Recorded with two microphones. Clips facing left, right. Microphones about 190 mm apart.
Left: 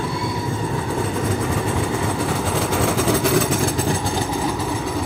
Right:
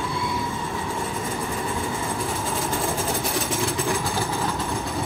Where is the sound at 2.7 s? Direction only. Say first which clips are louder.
Left 9 dB; 85° left.